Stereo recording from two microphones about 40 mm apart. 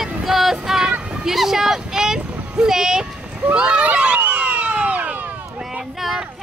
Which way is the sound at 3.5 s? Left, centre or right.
Right.